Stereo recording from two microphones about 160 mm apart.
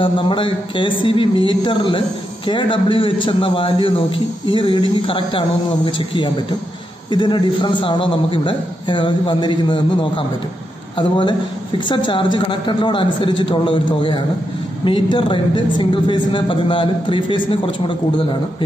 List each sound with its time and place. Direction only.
0.0 s a man's voice: 30° left (ahead or behind)